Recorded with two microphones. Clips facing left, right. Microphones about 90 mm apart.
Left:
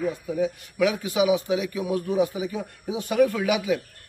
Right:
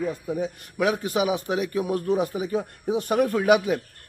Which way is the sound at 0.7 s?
40° right (ahead or behind).